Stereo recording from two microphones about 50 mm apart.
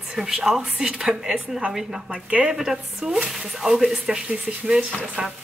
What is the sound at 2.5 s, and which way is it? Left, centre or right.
Speech, centre.